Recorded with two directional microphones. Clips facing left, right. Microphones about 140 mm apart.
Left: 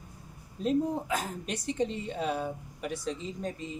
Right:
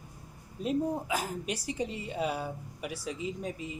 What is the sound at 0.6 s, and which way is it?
Speech, 5° right (ahead or behind).